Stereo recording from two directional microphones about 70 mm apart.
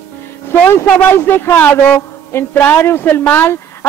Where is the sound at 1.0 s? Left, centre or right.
Left.